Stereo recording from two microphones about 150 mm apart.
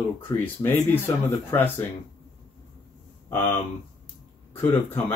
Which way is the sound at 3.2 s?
15° left (ahead or behind).